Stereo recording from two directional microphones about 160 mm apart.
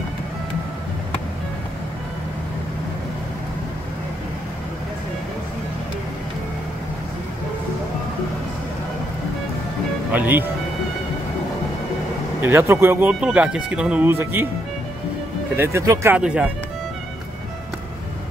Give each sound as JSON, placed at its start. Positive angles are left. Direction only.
{"t": 10.1, "sound": "speech", "side_deg": -10}
{"t": 12.4, "sound": "speech", "side_deg": -15}
{"t": 15.5, "sound": "speech", "side_deg": -15}
{"t": 16.2, "sound": "speech", "side_deg": -5}